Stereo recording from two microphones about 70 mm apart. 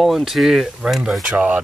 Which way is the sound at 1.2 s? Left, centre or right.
Centre.